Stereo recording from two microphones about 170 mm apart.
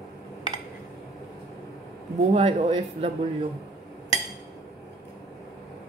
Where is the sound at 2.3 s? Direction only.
35° right (ahead or behind).